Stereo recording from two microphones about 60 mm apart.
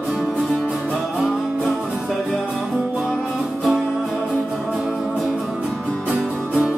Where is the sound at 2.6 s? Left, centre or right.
Centre.